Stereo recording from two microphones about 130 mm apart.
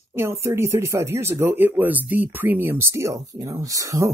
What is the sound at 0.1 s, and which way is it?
Speech, 20° right (ahead or behind).